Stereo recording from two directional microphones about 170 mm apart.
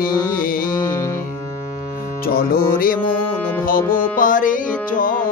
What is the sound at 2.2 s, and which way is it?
Speech, 60° left (ahead or behind).